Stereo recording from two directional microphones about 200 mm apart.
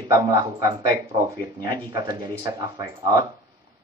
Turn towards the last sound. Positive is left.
turn(degrees=-20)  # may be behind; listen again after turning